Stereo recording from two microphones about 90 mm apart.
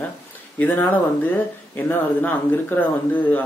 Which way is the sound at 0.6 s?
20° left (ahead or behind).